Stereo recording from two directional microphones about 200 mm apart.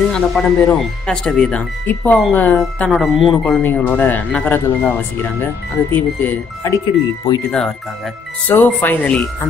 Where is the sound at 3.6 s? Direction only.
10° left (ahead or behind).